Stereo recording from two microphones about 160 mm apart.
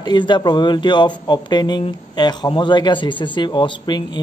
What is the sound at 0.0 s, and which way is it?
Speech, 30° left (ahead or behind).